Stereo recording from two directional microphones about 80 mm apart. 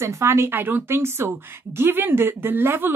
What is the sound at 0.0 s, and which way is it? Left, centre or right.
A woman's voice, right.